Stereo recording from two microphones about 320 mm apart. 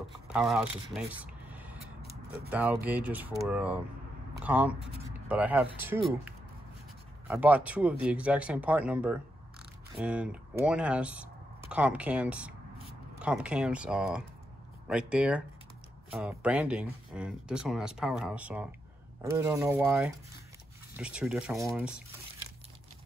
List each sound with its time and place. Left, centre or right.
0.3 s speech: centre
2.0 s a sound: right
2.5 s speech: centre
7.2 s speech: centre